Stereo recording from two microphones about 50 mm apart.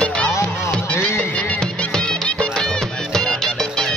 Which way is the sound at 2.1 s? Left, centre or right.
Centre.